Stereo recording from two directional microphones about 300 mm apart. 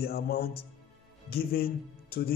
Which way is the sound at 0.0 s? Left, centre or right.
Left.